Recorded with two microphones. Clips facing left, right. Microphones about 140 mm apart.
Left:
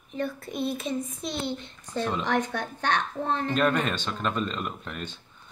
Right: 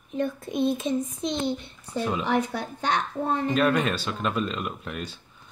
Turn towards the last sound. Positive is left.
turn(degrees=-5)  # may be behind; listen again after turning